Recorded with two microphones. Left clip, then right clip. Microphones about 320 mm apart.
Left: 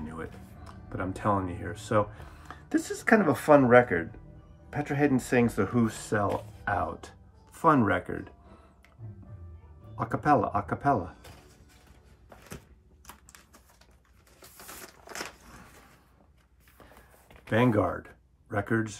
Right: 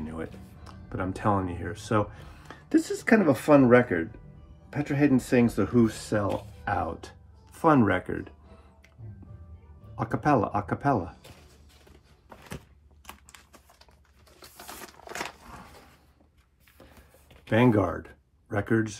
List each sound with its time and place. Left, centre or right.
0.0 s speech: centre
9.9 s speech: centre
15.0 s biting: centre
17.5 s speech: centre